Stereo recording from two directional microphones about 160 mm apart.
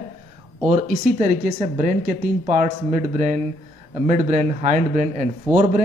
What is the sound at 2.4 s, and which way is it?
A man's voice, 50° right (ahead or behind).